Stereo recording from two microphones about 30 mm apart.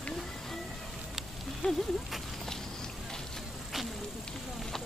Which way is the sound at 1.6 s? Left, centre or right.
Left.